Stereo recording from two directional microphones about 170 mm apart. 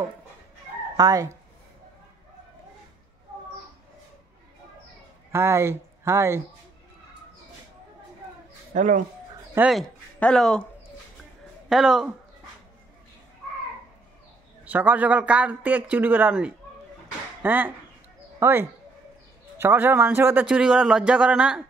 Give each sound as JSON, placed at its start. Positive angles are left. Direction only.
{"t": 0.9, "sound": "speech", "side_deg": -20}
{"t": 5.3, "sound": "speech", "side_deg": -15}
{"t": 8.7, "sound": "speech", "side_deg": -45}
{"t": 9.6, "sound": "speech", "side_deg": -5}
{"t": 11.7, "sound": "speech", "side_deg": 0}
{"t": 14.6, "sound": "a man's voice", "side_deg": -10}